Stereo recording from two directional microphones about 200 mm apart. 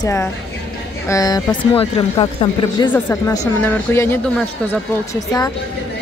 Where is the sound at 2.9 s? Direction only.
15° left (ahead or behind).